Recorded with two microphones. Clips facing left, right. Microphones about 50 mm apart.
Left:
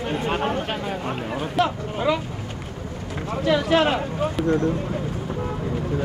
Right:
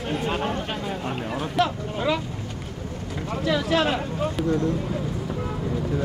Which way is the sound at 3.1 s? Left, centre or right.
Left.